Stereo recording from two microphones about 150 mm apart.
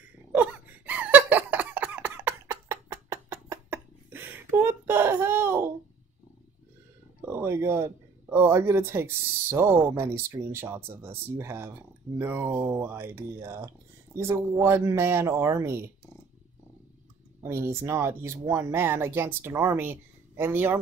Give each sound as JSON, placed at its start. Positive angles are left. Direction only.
{"t": 0.3, "sound": "wail", "side_deg": -10}
{"t": 7.2, "sound": "speech", "side_deg": -15}
{"t": 17.4, "sound": "speech", "side_deg": -15}